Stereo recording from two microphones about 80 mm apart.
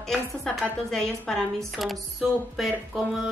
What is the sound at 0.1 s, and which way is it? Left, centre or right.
A woman's voice, centre.